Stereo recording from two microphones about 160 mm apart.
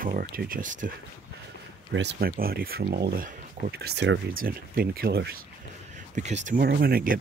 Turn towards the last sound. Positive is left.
turn(degrees=-65)  # may be behind; listen again after turning